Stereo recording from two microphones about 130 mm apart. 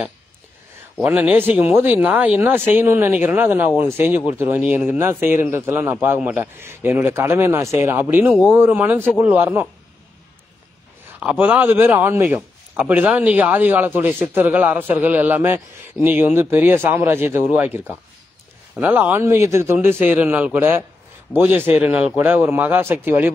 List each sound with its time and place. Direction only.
1.0 s a man's voice: 10° right (ahead or behind)
11.1 s a man's voice: 15° right (ahead or behind)